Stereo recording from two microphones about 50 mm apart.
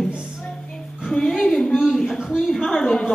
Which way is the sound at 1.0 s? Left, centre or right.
Centre.